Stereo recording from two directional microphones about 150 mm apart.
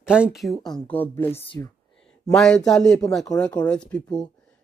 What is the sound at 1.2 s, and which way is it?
Speech, 15° left (ahead or behind).